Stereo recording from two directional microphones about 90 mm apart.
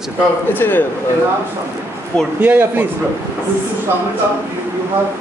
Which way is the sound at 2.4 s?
20° right (ahead or behind).